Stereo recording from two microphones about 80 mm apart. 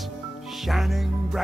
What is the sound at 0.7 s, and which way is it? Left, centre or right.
Music, centre.